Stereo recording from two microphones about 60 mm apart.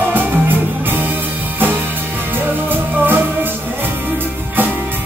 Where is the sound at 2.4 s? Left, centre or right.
Right.